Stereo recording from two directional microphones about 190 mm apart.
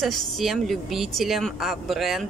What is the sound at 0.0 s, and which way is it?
Speech, centre (ahead or behind).